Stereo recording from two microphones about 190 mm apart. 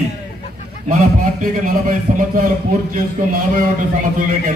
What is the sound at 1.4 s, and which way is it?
A man's voice, 45° right (ahead or behind).